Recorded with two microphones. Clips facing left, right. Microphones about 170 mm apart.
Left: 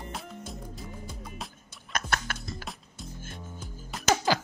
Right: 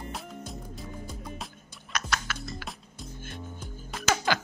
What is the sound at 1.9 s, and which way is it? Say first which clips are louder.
Music: left 1 dB; 50° left (ahead or behind).